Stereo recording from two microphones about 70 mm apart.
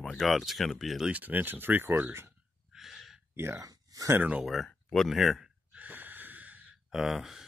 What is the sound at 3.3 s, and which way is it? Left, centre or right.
Speech, right.